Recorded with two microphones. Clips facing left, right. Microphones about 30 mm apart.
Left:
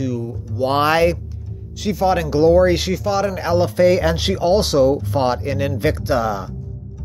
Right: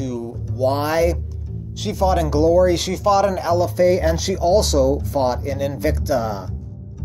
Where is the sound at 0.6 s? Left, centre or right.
Left.